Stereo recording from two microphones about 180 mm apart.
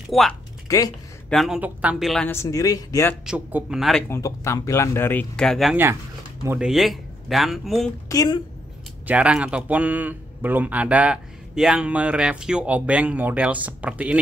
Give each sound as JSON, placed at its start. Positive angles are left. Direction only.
{"t": 0.1, "sound": "speech", "side_deg": 0}
{"t": 0.7, "sound": "speech", "side_deg": 20}
{"t": 1.3, "sound": "speech", "side_deg": 0}
{"t": 2.2, "sound": "speech", "side_deg": 15}
{"t": 3.3, "sound": "speech", "side_deg": -5}
{"t": 4.1, "sound": "speech", "side_deg": 15}
{"t": 6.4, "sound": "speech", "side_deg": -10}
{"t": 6.7, "sound": "speech", "side_deg": 0}
{"t": 8.1, "sound": "a woman's voice", "side_deg": 20}
{"t": 9.0, "sound": "speech", "side_deg": -5}